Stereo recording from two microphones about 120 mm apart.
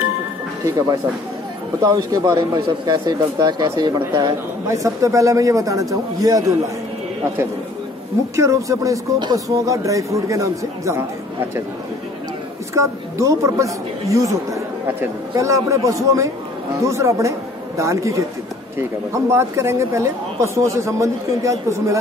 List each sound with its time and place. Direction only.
0.7 s speech: 30° right (ahead or behind)
8.4 s speech: 25° right (ahead or behind)
12.7 s speech: 25° right (ahead or behind)